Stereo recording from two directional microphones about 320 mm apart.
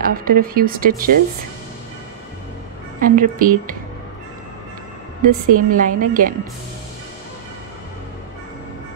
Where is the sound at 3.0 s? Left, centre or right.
Right.